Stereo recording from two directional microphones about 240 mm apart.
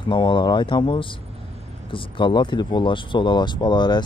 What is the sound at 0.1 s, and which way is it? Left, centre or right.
Speech, centre.